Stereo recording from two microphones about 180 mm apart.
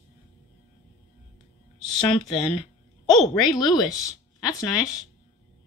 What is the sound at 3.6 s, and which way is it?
Speech, 20° left (ahead or behind).